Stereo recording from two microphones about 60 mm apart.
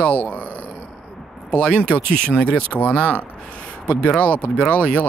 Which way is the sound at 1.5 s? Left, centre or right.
Left.